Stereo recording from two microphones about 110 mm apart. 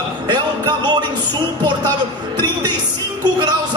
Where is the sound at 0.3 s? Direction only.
40° right (ahead or behind).